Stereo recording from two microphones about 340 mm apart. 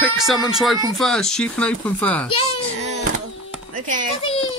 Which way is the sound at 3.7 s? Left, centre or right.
Right.